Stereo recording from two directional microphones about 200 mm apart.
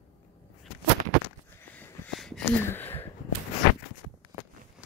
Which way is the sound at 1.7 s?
5° left (ahead or behind).